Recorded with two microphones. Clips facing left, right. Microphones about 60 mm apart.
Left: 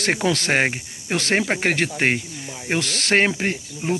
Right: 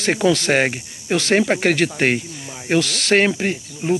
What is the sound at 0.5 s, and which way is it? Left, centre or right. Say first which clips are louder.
Speech: right 2 dB; left.